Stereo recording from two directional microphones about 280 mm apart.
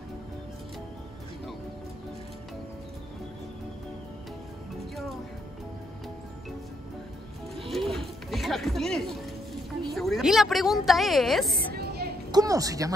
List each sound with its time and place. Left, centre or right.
7.5 s music: centre
9.9 s a woman's voice: centre
11.7 s a sound: right
12.3 s a woman's voice: centre